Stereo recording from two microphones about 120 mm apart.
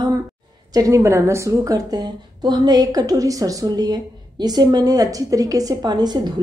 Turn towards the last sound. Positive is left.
turn(degrees=-35)  # may be behind; listen again after turning